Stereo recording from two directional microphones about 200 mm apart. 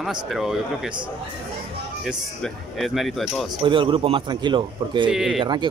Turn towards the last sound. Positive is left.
turn(degrees=0)  # may be behind; listen again after turning